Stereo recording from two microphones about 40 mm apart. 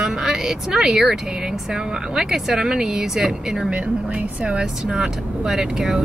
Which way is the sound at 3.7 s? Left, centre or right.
Right.